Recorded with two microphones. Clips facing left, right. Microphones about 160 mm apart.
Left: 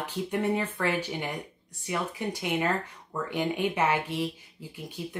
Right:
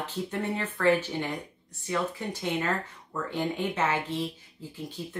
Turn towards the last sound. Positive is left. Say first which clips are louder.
# right 1 dB
turn(degrees=15)  # may be behind; listen again after turning